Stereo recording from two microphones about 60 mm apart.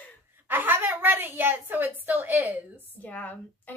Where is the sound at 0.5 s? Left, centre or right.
Right.